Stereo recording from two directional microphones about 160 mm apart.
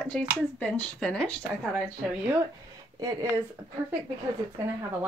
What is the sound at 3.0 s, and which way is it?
Speech, 25° right (ahead or behind).